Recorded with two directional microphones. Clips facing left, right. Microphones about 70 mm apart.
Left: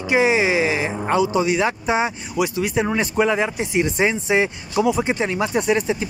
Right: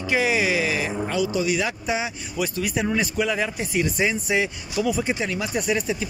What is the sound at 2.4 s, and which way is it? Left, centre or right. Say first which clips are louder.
Speech: left 5 dB; left.